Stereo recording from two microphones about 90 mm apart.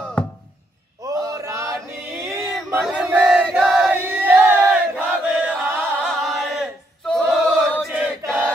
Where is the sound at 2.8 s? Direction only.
5° right (ahead or behind).